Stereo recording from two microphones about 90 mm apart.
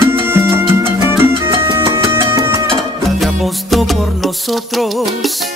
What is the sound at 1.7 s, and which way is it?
Music, 30° right (ahead or behind).